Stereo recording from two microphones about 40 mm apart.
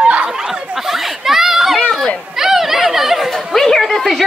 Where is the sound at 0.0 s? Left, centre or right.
Right.